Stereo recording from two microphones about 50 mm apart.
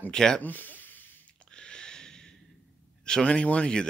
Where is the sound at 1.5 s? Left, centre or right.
Centre.